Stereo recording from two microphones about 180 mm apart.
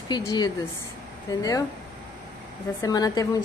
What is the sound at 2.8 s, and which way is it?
Speech, 20° left (ahead or behind).